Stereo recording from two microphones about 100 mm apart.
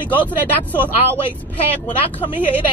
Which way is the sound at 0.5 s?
15° left (ahead or behind).